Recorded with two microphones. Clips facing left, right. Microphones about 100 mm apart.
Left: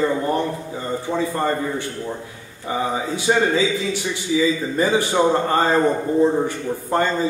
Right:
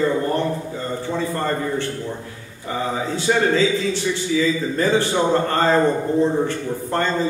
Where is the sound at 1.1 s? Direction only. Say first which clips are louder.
Left 2 dB; 15° left (ahead or behind).